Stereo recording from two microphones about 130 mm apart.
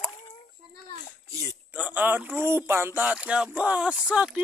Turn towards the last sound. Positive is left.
turn(degrees=-10)  # may be behind; listen again after turning